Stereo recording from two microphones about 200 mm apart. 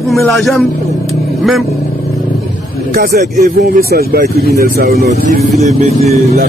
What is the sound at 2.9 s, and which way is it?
Speech, 50° right (ahead or behind).